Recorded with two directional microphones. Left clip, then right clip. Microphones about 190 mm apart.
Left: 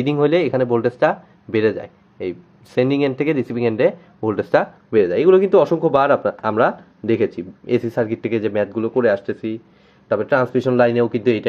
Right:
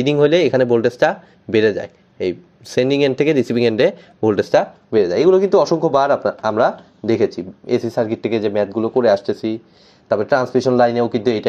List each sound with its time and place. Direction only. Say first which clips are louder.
0.0 s speech: right 3 dB; 15° right (ahead or behind)
4.5 s speech: right 2 dB; centre (ahead or behind)